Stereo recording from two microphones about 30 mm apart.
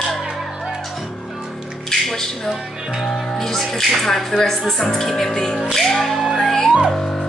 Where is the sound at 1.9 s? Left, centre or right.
Centre.